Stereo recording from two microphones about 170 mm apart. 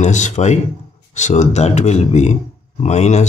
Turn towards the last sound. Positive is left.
turn(degrees=40)  # may be behind; listen again after turning